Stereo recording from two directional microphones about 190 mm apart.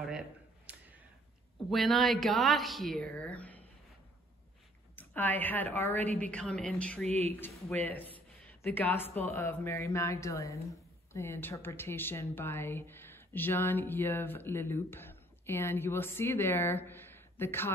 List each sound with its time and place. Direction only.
0.7 s a sound: 5° right (ahead or behind)
1.7 s speech: centre (ahead or behind)
4.9 s speech: 10° left (ahead or behind)
7.1 s speech: 35° right (ahead or behind)
7.3 s speech: 10° left (ahead or behind)